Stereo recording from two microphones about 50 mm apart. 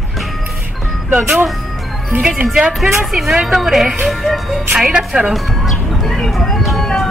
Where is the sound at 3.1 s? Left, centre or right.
Centre.